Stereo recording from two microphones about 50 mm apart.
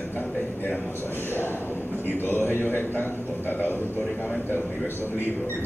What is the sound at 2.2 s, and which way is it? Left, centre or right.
A man's voice, left.